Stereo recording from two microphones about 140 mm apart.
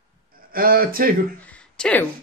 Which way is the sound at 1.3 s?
10° left (ahead or behind).